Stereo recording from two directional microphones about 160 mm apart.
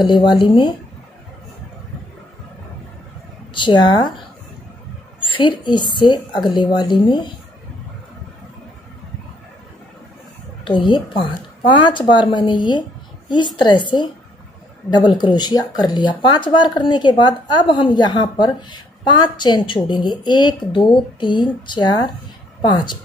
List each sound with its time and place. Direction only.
0.0 s speech: 30° left (ahead or behind)
3.5 s speech: 30° left (ahead or behind)
5.2 s a woman's voice: 30° left (ahead or behind)
10.6 s speech: 30° left (ahead or behind)